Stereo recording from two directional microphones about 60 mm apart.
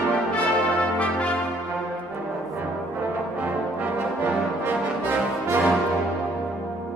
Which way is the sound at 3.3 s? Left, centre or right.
Right.